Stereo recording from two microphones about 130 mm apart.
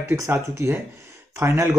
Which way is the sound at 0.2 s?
20° right (ahead or behind).